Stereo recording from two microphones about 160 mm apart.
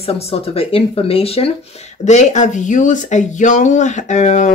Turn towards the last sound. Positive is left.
turn(degrees=50)  # may be behind; listen again after turning